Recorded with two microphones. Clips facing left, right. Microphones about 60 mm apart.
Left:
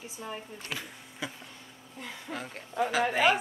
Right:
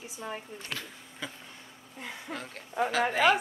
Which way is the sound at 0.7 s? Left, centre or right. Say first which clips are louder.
Left 1 dB; centre.